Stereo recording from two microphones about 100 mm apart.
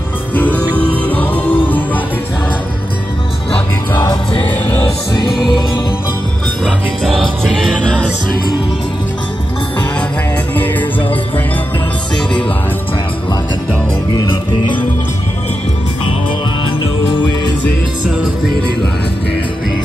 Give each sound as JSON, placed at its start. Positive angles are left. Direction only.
{"t": 0.3, "sound": "music", "side_deg": 15}
{"t": 3.9, "sound": "music", "side_deg": 50}
{"t": 5.2, "sound": "music", "side_deg": 45}
{"t": 6.6, "sound": "music", "side_deg": 0}
{"t": 10.5, "sound": "music", "side_deg": 15}
{"t": 14.1, "sound": "music", "side_deg": 55}